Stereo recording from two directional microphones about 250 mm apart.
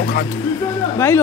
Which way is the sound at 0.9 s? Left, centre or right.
Centre.